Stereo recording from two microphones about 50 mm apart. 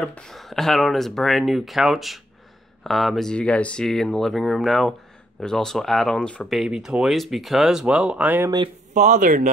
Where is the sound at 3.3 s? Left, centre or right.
Left.